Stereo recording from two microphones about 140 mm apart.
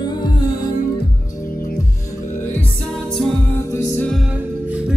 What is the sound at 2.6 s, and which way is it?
Music, 10° left (ahead or behind).